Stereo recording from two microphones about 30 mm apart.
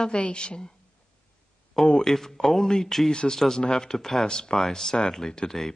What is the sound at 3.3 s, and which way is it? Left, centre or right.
A woman's voice, centre.